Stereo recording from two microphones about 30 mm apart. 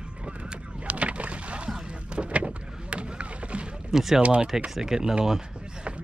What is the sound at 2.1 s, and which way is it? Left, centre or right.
Rowboat, right.